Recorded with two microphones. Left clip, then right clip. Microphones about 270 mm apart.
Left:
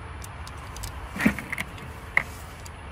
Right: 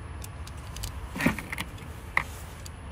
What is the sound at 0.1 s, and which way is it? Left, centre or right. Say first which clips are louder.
Vehicle: left 4 dB; centre.